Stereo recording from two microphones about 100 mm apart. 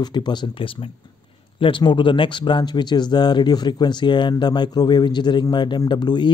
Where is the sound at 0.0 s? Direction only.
45° left (ahead or behind).